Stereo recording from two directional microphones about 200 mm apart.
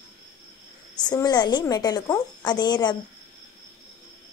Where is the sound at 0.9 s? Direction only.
20° left (ahead or behind).